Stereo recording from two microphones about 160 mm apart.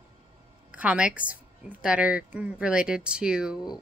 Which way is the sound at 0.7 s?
10° right (ahead or behind).